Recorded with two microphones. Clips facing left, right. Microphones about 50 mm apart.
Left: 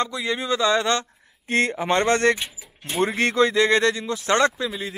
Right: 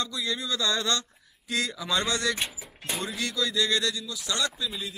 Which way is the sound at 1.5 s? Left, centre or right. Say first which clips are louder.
Left 8 dB; left.